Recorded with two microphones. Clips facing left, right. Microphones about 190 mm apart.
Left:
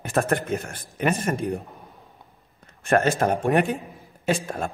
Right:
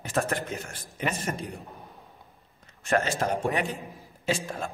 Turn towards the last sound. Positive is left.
turn(degrees=55)  # may be behind; listen again after turning